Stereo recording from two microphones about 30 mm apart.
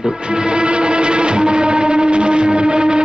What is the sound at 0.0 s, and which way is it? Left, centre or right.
Music, right.